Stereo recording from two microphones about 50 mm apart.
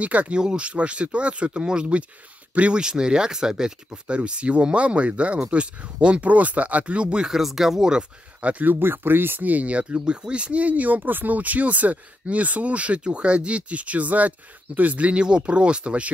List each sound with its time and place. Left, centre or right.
0.0 s speech: right
0.3 s speech: right
2.8 s speech: centre
4.1 s speech: right
7.2 s speech: centre
8.4 s speech: right